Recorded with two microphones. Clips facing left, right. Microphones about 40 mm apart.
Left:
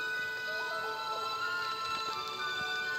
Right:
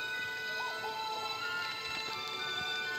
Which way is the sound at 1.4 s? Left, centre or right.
Right.